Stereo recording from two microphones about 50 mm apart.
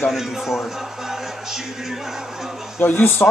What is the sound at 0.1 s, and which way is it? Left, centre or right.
Speech, centre.